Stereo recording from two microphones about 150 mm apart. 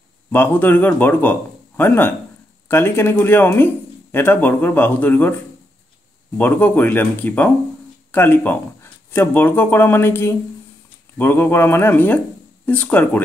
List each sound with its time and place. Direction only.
0.3 s a man's voice: 15° left (ahead or behind)
6.3 s a man's voice: 10° left (ahead or behind)